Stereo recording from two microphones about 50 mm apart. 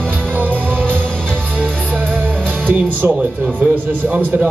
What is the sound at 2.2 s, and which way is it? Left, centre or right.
Music, centre.